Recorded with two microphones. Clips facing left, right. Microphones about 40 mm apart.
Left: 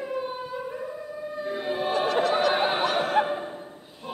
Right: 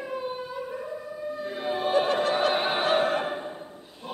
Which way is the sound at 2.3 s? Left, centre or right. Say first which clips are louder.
Left 1 dB; right.